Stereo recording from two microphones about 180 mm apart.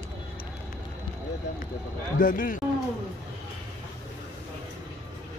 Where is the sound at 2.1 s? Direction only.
50° left (ahead or behind).